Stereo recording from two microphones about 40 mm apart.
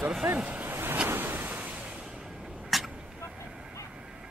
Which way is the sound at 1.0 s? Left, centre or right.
Right.